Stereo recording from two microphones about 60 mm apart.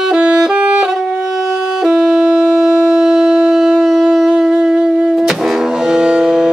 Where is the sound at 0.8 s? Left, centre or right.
Centre.